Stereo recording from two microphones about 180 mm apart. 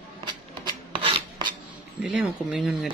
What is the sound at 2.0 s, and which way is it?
Speech, 5° right (ahead or behind).